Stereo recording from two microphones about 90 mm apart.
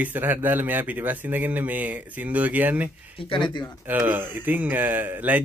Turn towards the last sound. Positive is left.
turn(degrees=-20)  # may be behind; listen again after turning